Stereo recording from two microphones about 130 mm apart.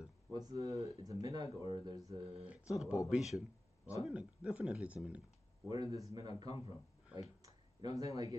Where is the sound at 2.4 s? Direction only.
10° right (ahead or behind).